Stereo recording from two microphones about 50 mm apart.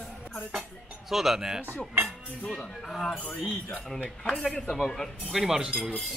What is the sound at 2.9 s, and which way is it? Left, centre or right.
Speech, centre.